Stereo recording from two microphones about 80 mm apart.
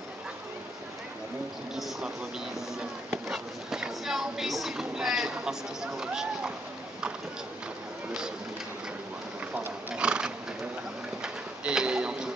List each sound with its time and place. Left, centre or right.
3.3 s speech: centre
9.6 s horse: centre
11.2 s pigeon: centre